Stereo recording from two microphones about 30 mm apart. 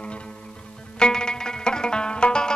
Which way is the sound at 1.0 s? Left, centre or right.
Left.